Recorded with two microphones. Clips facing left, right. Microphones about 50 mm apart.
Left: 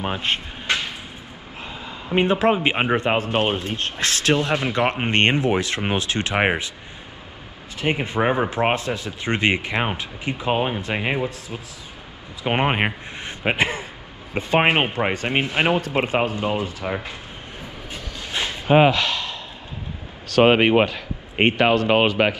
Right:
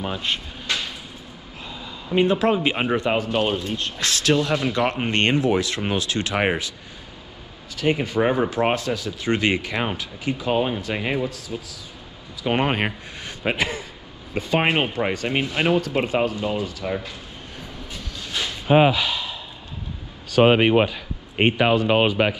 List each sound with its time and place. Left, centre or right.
0.0 s a man's voice: left
7.7 s speech: left
12.4 s speech: left
18.2 s a sound: left
18.7 s speech: left
20.4 s speech: left